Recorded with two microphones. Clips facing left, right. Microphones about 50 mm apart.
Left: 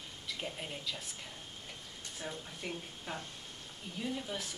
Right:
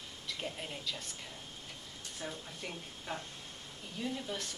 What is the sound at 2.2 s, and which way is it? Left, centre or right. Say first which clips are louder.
Speech: even; centre.